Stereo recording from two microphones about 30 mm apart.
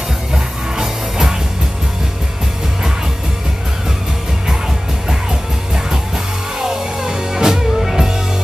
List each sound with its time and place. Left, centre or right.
0.3 s music: centre
5.9 s music: centre